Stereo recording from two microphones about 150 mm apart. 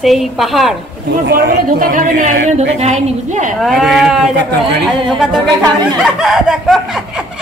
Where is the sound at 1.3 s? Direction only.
85° right; by 3.5 s 55° right (ahead or behind).